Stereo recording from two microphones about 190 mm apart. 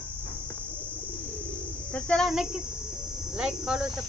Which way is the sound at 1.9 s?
5° left (ahead or behind).